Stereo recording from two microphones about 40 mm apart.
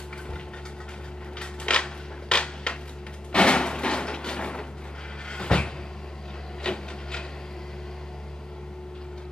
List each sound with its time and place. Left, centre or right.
1.4 s a sound: left
5.3 s cupboard open or close: left
6.6 s printer: left